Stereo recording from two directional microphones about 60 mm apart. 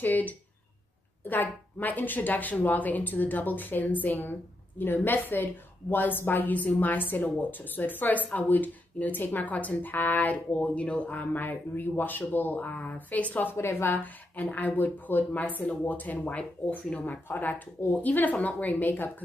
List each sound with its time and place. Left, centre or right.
0.0 s speech: left